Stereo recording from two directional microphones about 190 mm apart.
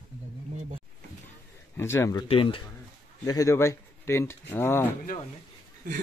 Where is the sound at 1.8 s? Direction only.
15° left (ahead or behind).